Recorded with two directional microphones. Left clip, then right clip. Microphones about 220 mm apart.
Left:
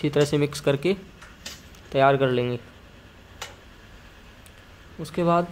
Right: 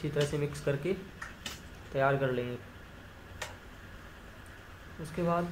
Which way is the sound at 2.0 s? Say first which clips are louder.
Left 10 dB; 45° left (ahead or behind).